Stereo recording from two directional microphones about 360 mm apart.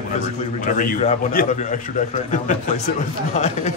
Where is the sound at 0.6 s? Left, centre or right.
Left.